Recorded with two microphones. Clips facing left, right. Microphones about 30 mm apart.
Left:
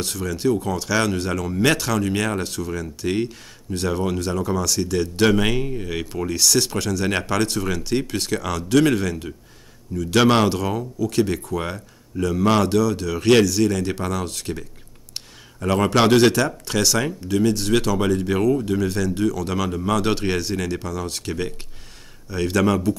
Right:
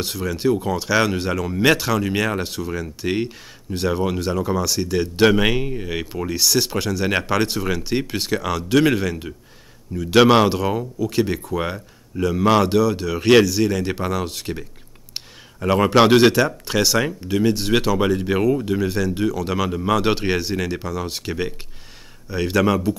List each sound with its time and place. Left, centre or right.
0.0 s speech: centre